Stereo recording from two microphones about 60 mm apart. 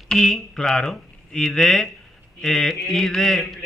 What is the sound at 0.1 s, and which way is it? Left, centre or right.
A man's voice, centre.